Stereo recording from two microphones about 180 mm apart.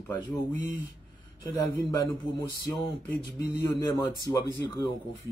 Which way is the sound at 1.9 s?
15° left (ahead or behind).